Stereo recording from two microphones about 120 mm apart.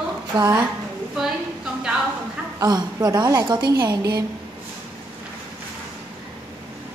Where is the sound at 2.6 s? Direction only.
30° right (ahead or behind).